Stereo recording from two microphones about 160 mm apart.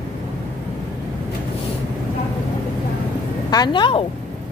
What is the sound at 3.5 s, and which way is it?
Speech, 25° left (ahead or behind).